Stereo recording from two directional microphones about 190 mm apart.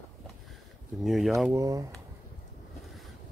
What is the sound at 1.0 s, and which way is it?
Speech, centre (ahead or behind).